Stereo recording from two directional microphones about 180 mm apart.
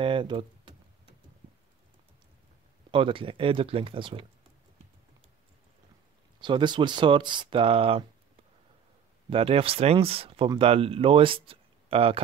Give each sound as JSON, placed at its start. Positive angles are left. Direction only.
{"t": 0.0, "sound": "speech", "side_deg": -30}
{"t": 2.9, "sound": "speech", "side_deg": -30}
{"t": 6.4, "sound": "speech", "side_deg": -25}
{"t": 9.3, "sound": "speech", "side_deg": -30}